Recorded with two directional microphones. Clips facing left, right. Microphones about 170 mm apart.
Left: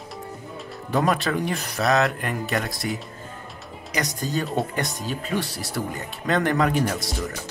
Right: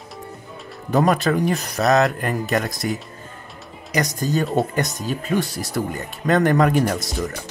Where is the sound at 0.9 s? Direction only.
45° right (ahead or behind).